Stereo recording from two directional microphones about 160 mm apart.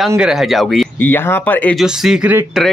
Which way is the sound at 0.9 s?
10° left (ahead or behind).